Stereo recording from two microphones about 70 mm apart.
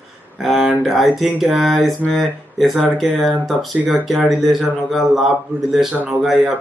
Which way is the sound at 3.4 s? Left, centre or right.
Centre.